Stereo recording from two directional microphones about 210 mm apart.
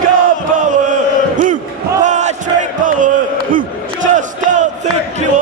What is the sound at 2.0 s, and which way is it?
Battle cry, 35° right (ahead or behind).